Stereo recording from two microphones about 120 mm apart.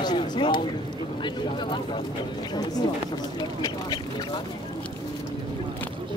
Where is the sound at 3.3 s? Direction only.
35° left (ahead or behind).